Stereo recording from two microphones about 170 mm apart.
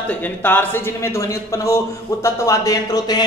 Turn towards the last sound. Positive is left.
turn(degrees=20)  # may be behind; listen again after turning